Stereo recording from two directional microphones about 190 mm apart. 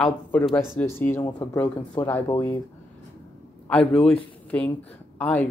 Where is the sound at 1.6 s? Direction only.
10° left (ahead or behind).